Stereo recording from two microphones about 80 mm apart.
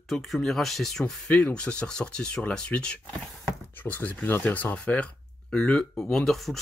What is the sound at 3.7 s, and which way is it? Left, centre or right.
Speech, left.